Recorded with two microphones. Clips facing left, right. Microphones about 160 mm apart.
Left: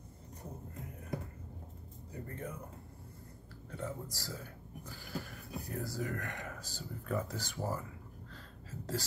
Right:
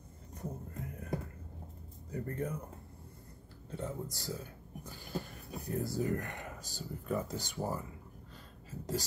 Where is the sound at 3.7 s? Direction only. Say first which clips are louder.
Right 2 dB; 20° right (ahead or behind).